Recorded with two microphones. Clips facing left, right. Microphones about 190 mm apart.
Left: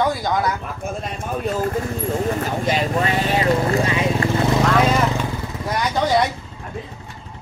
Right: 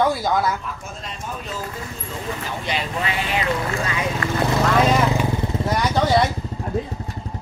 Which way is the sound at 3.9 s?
25° left (ahead or behind).